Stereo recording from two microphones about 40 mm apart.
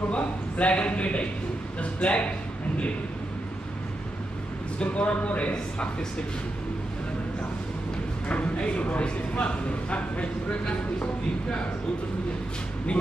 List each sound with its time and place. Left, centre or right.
0.1 s speech: left
4.7 s speech: left
8.3 s speech: left